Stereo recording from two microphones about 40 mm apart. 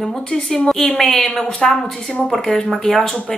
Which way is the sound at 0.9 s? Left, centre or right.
Centre.